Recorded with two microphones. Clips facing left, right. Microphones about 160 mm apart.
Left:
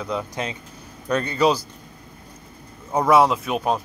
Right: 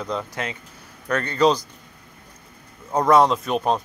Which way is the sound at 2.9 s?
5° left (ahead or behind).